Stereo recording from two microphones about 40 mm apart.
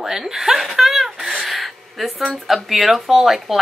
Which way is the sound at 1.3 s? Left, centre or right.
Centre.